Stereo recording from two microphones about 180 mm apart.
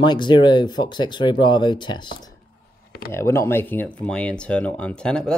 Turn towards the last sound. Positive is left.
turn(degrees=5)  # may be behind; listen again after turning